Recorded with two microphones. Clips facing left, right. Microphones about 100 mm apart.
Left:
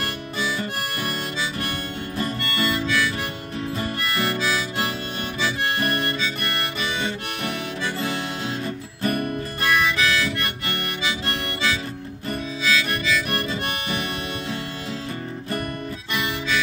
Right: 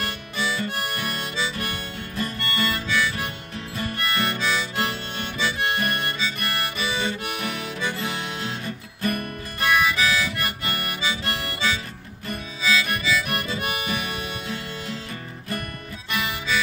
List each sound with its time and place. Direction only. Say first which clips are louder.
0.0 s harmonica: left 1 dB; centre (ahead or behind)
9.0 s music: left 3 dB; 30° left (ahead or behind)
9.6 s harmonica: right 1 dB; centre (ahead or behind)
16.1 s music: even; centre (ahead or behind)